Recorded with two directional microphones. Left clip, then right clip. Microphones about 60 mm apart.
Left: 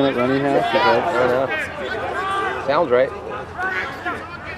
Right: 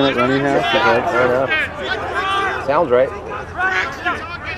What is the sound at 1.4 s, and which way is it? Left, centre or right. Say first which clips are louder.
Speech: right 4 dB; right.